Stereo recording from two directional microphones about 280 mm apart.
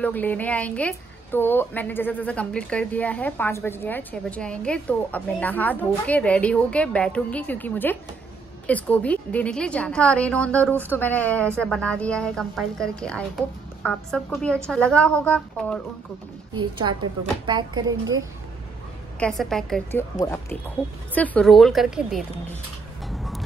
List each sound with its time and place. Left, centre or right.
0.0 s speech: centre
16.7 s a woman's voice: centre
19.1 s a woman's voice: centre
23.0 s music: centre